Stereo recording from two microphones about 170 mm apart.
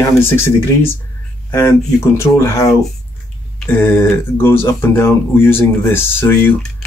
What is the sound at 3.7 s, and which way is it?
Speech, 10° left (ahead or behind).